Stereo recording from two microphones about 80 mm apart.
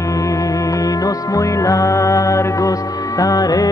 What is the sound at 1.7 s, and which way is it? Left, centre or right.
Music, left.